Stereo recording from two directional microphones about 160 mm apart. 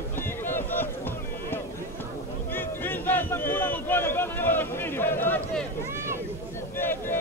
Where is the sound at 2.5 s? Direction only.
10° left (ahead or behind).